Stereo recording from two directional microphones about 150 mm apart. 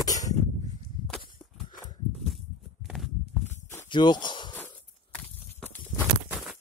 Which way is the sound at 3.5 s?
20° left (ahead or behind).